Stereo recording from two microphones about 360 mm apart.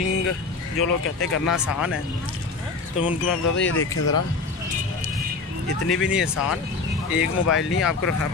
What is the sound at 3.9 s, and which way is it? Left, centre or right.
Speech, left.